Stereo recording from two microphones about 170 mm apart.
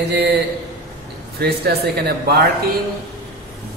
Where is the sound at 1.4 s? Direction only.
70° right (ahead or behind).